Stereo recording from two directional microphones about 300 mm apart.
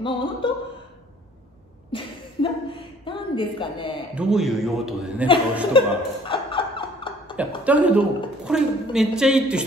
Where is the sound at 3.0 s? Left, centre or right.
Centre.